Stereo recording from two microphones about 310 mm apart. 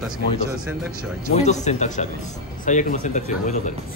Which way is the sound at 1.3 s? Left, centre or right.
Left.